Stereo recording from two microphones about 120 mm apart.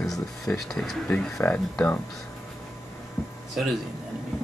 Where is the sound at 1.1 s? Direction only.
15° left (ahead or behind).